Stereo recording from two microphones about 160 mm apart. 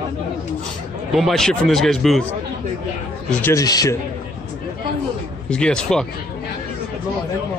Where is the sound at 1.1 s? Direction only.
Centre (ahead or behind).